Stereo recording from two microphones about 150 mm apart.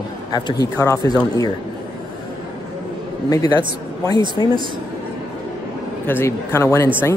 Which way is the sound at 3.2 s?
25° left (ahead or behind).